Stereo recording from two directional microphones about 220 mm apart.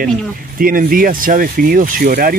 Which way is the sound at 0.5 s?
40° right (ahead or behind).